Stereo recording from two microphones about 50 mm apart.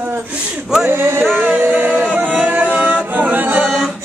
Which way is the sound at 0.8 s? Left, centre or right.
Right.